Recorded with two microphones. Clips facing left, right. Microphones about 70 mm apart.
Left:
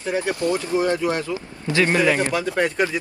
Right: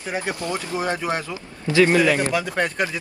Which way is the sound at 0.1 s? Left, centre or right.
Right.